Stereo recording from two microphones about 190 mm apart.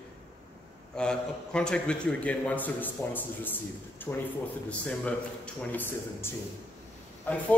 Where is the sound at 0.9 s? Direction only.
5° left (ahead or behind).